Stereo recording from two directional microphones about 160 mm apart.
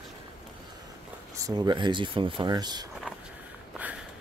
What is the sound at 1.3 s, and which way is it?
Speech, 20° right (ahead or behind).